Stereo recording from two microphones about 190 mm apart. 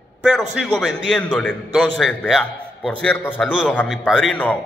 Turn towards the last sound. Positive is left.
turn(degrees=5)  # may be behind; listen again after turning